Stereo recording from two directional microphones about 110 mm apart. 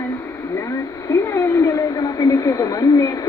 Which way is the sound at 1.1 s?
25° left (ahead or behind).